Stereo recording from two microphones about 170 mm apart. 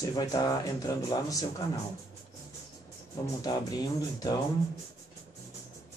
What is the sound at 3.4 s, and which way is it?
Speech, 25° left (ahead or behind).